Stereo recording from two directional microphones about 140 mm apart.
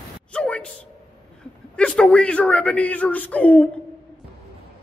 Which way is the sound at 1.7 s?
5° left (ahead or behind).